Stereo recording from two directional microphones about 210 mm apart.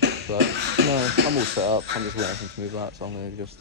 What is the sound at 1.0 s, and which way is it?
Speech, 50° right (ahead or behind).